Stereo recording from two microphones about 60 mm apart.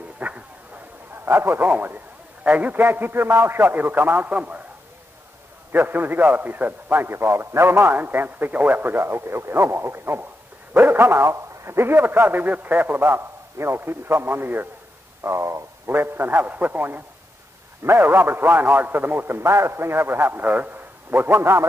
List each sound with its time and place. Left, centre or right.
0.2 s a sound: right
1.2 s a man's voice: right
4.4 s a sound: right
5.7 s a man's voice: right
8.0 s a man's voice: right
10.7 s dog: right
11.0 s a man's voice: right
15.2 s speech: right
15.9 s a man's voice: right